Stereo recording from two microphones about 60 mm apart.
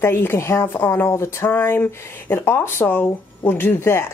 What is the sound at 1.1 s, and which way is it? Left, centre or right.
A woman's voice, left.